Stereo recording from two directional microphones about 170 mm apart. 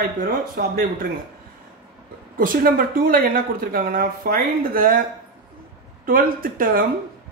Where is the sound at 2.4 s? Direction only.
60° right (ahead or behind).